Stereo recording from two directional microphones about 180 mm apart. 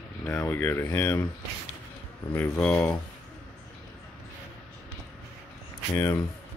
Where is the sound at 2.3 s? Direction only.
10° left (ahead or behind).